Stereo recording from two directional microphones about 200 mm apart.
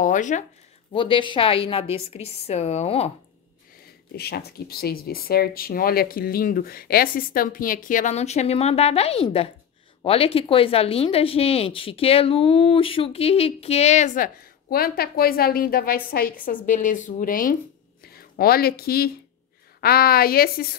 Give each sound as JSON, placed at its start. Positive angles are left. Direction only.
{"t": 0.0, "sound": "speech", "side_deg": 40}
{"t": 0.9, "sound": "speech", "side_deg": 25}
{"t": 4.2, "sound": "speech", "side_deg": 50}